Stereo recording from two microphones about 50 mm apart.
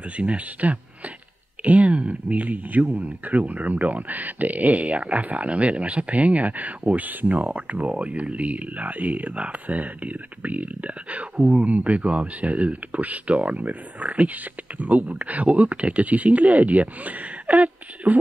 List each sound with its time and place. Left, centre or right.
0.2 s speech: right